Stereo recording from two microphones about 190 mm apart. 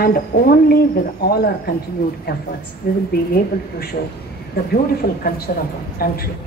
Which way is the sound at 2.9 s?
55° left (ahead or behind).